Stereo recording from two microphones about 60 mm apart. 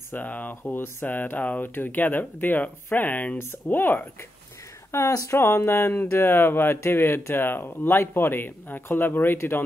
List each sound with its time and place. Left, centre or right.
0.1 s speech: left
5.1 s speech: left